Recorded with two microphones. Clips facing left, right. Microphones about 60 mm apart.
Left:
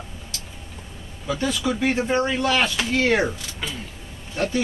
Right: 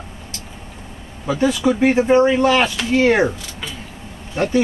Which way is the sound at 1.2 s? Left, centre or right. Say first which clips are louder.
Right 7 dB; right.